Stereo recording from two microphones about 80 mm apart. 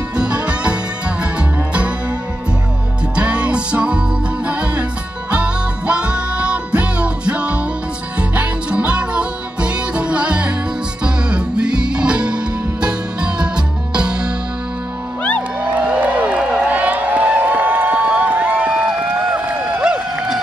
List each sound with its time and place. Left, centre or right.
0.1 s music: centre
3.2 s music: centre
15.7 s a sound: centre
19.3 s run: centre